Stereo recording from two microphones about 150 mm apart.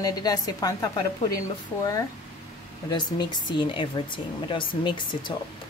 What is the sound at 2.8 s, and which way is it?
Speech, 30° left (ahead or behind).